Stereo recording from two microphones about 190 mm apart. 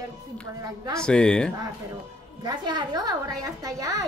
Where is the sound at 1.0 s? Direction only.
5° left (ahead or behind).